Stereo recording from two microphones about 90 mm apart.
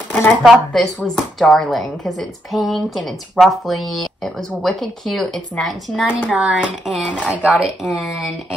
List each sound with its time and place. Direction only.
0.4 s speech: centre (ahead or behind)